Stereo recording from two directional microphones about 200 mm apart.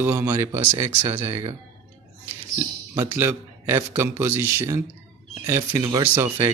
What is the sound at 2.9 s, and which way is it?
Speech, 15° right (ahead or behind).